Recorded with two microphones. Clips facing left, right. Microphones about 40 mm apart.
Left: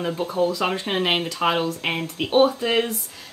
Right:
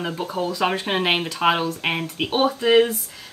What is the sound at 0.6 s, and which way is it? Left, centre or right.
A woman's voice, right.